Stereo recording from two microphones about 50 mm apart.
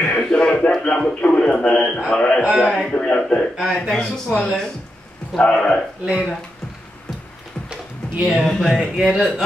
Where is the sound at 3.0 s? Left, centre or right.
Left.